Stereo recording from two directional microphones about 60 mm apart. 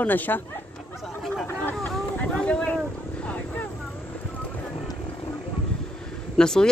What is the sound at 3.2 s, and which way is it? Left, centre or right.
Vehicle, left.